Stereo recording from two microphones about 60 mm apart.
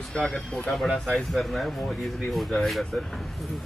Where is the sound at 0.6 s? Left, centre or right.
Centre.